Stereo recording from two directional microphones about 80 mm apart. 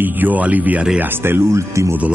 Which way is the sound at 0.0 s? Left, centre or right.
Right.